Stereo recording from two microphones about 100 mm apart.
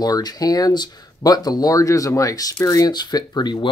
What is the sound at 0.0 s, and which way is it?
Speech, 40° left (ahead or behind).